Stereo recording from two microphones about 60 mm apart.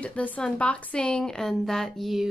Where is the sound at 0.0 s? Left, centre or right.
Left; by 2.2 s centre.